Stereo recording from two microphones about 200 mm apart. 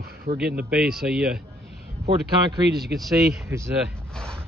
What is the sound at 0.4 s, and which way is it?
Speech, 55° right (ahead or behind).